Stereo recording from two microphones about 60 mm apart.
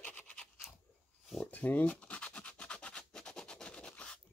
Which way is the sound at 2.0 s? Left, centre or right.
Centre.